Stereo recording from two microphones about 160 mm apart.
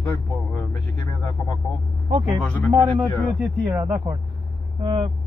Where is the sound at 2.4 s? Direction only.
10° left (ahead or behind).